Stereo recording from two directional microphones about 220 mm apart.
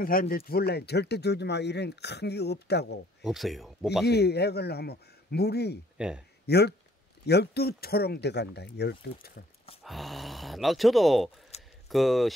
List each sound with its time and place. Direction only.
0.0 s speech: 40° left (ahead or behind)
3.2 s speech: centre (ahead or behind)
4.0 s speech: 45° left (ahead or behind)
5.9 s speech: 5° right (ahead or behind)
6.4 s speech: 45° left (ahead or behind)
9.8 s speech: centre (ahead or behind)